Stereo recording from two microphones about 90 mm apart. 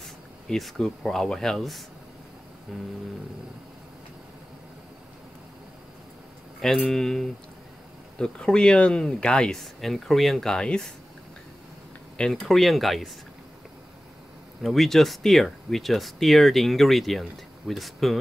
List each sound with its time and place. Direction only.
0.0 s speech: centre (ahead or behind)
6.6 s speech: 5° left (ahead or behind)
12.2 s speech: 5° left (ahead or behind)
14.6 s speech: centre (ahead or behind)